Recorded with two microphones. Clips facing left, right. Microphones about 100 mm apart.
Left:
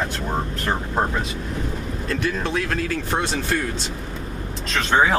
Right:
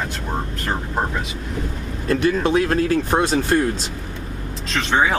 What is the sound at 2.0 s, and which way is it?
Speech, 45° right (ahead or behind).